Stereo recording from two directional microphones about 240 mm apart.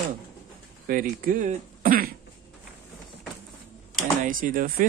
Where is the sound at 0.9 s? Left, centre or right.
Right.